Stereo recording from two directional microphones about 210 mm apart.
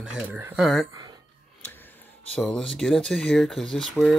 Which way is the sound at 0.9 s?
20° right (ahead or behind).